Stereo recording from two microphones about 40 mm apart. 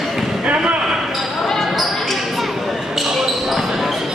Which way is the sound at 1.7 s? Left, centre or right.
Centre.